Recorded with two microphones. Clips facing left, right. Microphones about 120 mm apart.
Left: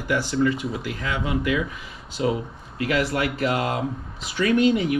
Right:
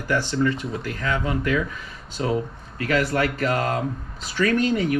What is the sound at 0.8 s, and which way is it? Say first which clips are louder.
Speech: right 2 dB; 45° right (ahead or behind).